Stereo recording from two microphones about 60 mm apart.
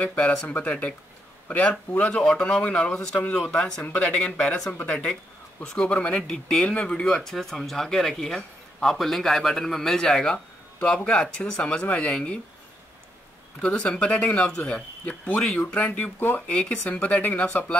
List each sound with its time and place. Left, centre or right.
0.0 s speech: left
3.8 s speech: left
13.6 s speech: centre
16.4 s speech: centre